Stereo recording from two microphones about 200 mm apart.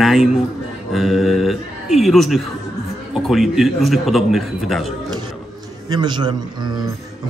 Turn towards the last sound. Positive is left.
turn(degrees=-20)  # may be behind; listen again after turning